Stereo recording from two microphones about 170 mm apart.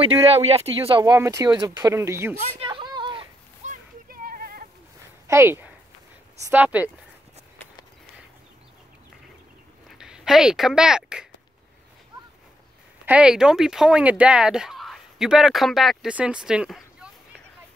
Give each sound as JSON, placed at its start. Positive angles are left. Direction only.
{"t": 0.0, "sound": "speech", "side_deg": -35}
{"t": 1.1, "sound": "speech", "side_deg": -15}
{"t": 2.6, "sound": "a sound", "side_deg": -25}
{"t": 3.6, "sound": "children playing", "side_deg": -55}
{"t": 5.3, "sound": "speech", "side_deg": -15}
{"t": 9.8, "sound": "speech", "side_deg": -5}
{"t": 13.0, "sound": "speech", "side_deg": -5}